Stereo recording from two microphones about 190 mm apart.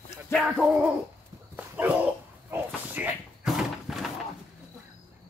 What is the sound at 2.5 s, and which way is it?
Slam, 5° right (ahead or behind).